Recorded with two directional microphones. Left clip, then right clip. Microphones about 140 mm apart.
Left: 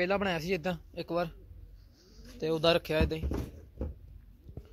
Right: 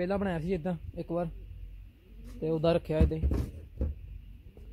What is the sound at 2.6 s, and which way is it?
Speech, 25° right (ahead or behind).